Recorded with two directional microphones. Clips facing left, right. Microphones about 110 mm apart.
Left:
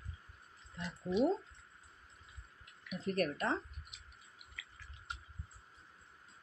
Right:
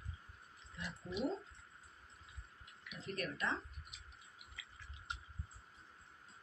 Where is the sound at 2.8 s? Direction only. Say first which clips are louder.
Left 8 dB; 50° left (ahead or behind).